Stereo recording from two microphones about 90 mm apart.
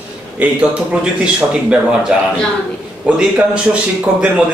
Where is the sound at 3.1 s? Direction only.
10° right (ahead or behind).